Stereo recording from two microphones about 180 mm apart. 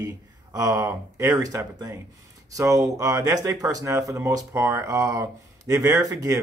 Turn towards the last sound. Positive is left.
turn(degrees=-20)  # may be behind; listen again after turning